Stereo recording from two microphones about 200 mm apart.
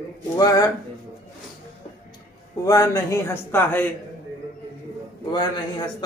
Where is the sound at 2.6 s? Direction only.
15° left (ahead or behind).